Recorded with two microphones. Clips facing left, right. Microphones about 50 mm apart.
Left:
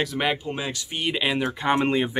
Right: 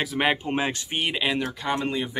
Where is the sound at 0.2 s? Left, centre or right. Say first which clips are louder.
Right 3 dB; centre.